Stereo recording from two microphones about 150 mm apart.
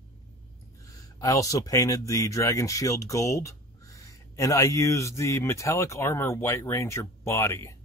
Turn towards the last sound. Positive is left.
turn(degrees=20)  # may be behind; listen again after turning